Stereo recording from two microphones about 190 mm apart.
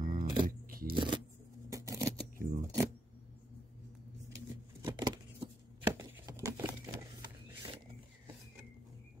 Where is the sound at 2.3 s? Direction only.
45° right (ahead or behind).